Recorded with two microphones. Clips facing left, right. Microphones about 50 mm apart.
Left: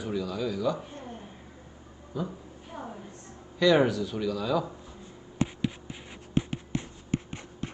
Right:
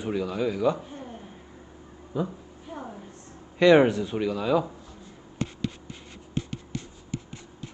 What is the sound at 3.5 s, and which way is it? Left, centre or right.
Speech, right.